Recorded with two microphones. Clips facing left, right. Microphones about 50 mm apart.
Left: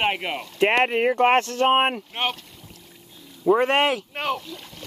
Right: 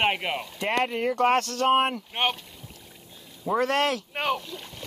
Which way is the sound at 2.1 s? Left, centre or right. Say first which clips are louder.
Even; centre.